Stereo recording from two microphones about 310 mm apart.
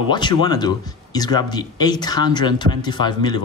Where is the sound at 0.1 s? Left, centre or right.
Centre.